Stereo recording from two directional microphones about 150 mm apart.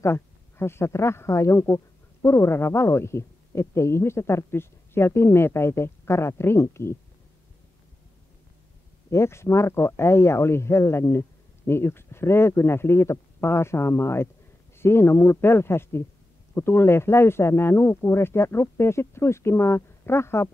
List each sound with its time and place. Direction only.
0.0 s speech: 15° left (ahead or behind)
9.1 s speech: 20° left (ahead or behind)